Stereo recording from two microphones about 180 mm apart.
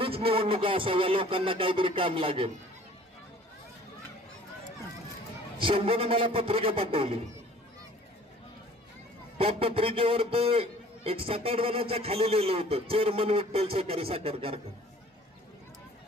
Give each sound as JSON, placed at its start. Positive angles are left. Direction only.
{"t": 0.0, "sound": "music", "side_deg": -30}
{"t": 5.6, "sound": "a man's voice", "side_deg": -30}
{"t": 9.4, "sound": "a man's voice", "side_deg": -30}